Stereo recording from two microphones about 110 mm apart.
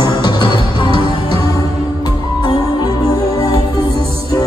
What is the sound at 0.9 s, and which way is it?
Music, 55° right (ahead or behind).